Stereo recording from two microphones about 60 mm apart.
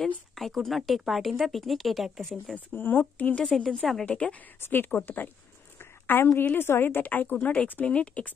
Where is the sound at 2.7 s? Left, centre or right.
Left.